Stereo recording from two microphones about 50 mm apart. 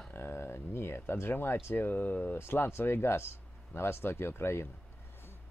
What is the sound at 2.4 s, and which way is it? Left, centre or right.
Speech, left.